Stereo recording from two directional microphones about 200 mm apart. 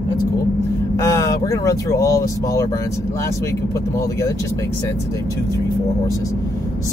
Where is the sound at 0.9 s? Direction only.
15° left (ahead or behind).